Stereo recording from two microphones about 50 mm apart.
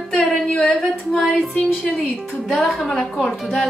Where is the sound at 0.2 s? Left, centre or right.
Centre.